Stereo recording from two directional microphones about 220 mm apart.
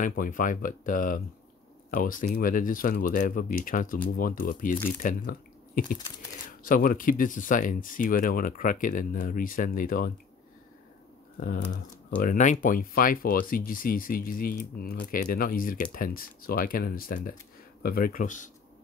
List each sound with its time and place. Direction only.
0.0 s speech: 40° left (ahead or behind)
6.6 s speech: 40° left (ahead or behind)
11.3 s speech: 40° left (ahead or behind)